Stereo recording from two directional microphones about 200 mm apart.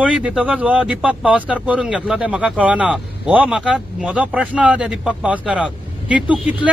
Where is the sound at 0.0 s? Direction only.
5° right (ahead or behind).